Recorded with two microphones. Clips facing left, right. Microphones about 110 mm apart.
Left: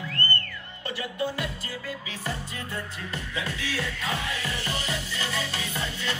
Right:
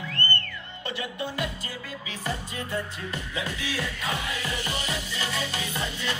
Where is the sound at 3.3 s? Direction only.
15° right (ahead or behind).